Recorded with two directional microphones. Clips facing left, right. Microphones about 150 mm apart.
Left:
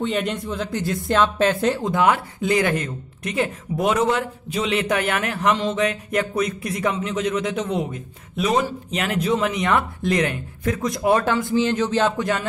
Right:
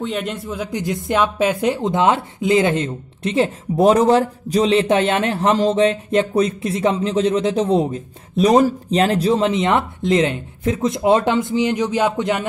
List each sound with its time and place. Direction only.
0.0 s speech: centre (ahead or behind); by 12.4 s 20° right (ahead or behind)